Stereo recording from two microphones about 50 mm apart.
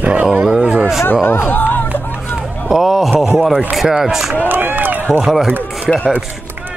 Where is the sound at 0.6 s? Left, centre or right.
Centre.